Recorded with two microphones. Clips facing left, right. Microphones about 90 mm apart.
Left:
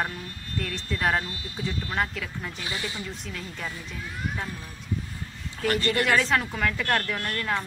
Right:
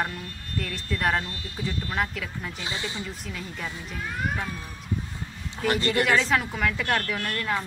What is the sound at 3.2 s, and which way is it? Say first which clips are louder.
Speech: right 1 dB; centre (ahead or behind).